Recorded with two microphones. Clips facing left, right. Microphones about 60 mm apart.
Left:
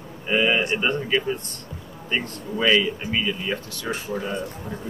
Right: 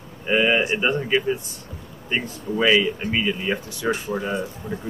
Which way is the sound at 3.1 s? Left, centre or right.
Centre.